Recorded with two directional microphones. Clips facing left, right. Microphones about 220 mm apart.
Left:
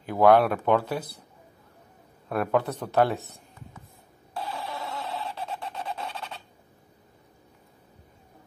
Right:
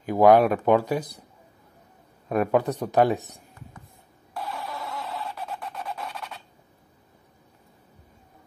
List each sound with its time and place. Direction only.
0.0 s speech: 15° right (ahead or behind)
2.2 s speech: 15° right (ahead or behind)
4.3 s a sound: 30° left (ahead or behind)